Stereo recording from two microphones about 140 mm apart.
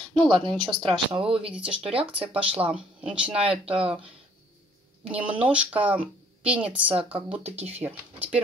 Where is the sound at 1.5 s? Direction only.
5° right (ahead or behind).